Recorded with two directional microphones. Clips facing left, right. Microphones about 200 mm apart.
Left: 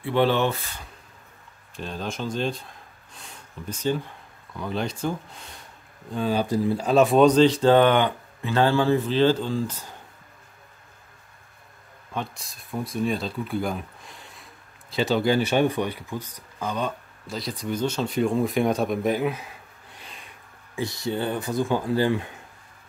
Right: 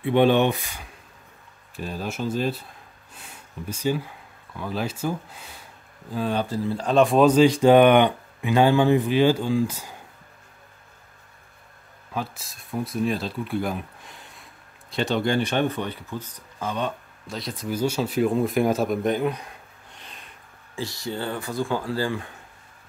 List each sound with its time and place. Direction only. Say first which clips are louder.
0.0 s speech: right 3 dB; 20° right (ahead or behind)
3.2 s a sound: right 2 dB; 10° right (ahead or behind)
4.6 s speech: even; 5° right (ahead or behind)
6.4 s speech: left 3 dB; 15° left (ahead or behind); by 9.9 s 10° right (ahead or behind)
12.1 s speech: right 1 dB; 5° right (ahead or behind)
14.9 s speech: left 2 dB; centre (ahead or behind)
16.5 s speech: even; centre (ahead or behind)
20.7 s speech: left 3 dB; 20° left (ahead or behind)